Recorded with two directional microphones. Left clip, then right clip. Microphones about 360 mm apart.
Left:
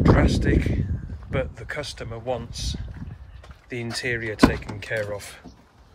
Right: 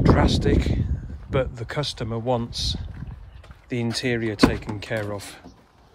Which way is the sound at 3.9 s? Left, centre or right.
Centre.